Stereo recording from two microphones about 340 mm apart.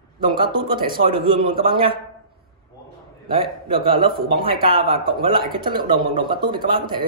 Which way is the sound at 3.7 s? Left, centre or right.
Centre.